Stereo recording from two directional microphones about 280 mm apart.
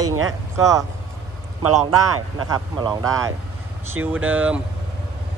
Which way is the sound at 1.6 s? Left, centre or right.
Right.